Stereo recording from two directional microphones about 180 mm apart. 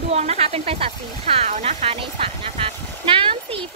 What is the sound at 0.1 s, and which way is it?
Speech, 35° right (ahead or behind).